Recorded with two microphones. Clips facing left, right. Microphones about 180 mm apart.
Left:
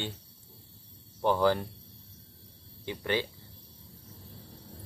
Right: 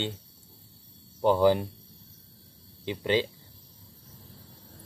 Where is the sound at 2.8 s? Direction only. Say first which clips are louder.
Right 5 dB; 20° right (ahead or behind).